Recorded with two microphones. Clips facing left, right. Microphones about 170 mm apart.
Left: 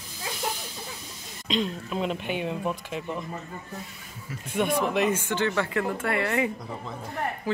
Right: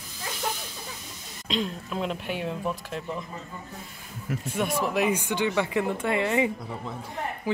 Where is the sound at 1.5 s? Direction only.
Centre (ahead or behind).